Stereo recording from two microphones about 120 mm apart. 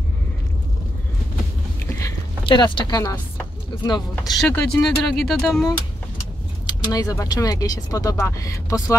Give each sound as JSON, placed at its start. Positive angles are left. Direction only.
{"t": 2.4, "sound": "speech", "side_deg": 40}
{"t": 4.4, "sound": "speech", "side_deg": 10}
{"t": 6.6, "sound": "speech", "side_deg": 35}